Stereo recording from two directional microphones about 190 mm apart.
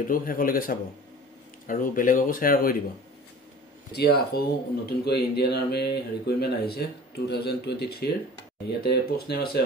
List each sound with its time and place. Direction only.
0.1 s speech: 50° left (ahead or behind)
3.9 s speech: 55° left (ahead or behind)